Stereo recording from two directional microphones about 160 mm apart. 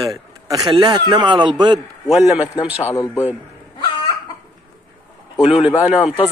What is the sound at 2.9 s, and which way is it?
Speech, 20° left (ahead or behind).